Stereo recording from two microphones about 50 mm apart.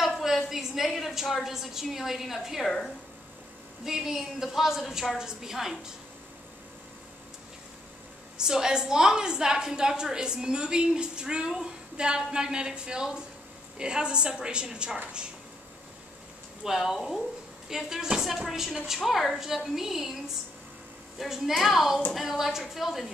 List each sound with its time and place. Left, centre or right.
0.0 s a sound: centre
0.5 s a woman's voice: centre
3.8 s a woman's voice: centre
8.4 s a woman's voice: centre
16.6 s a woman's voice: centre
21.2 s a woman's voice: centre